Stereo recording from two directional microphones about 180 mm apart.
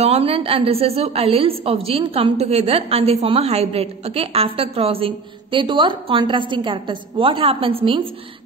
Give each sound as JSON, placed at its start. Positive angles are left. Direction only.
{"t": 0.0, "sound": "a woman's voice", "side_deg": -35}